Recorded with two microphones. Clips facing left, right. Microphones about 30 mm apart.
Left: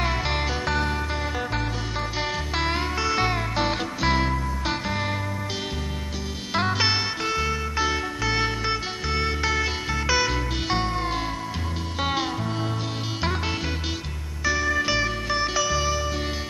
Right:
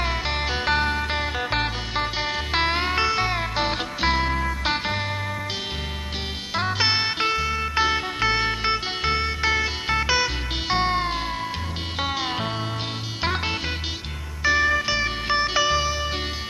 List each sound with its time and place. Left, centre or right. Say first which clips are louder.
0.0 s music: even; centre
0.7 s music: right 3 dB; right
1.5 s music: right 3 dB; right
2.1 s music: right 1 dB; centre
2.5 s music: right 4 dB; right
3.3 s music: right 1 dB; centre
4.3 s music: right 3 dB; right
6.5 s music: even; centre
7.5 s music: right 3 dB; right
10.8 s music: right 4 dB; right
13.2 s music: right 3 dB; right
14.8 s music: left 1 dB; centre
15.0 s music: right 2 dB; right
15.8 s music: even; right